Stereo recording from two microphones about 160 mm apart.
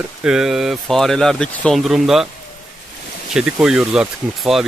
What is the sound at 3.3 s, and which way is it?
Speech, 5° right (ahead or behind).